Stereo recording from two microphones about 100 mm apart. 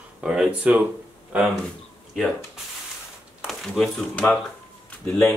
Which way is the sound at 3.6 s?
5° left (ahead or behind).